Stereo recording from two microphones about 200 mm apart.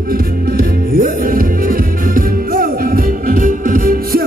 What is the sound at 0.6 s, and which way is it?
Music, 45° right (ahead or behind).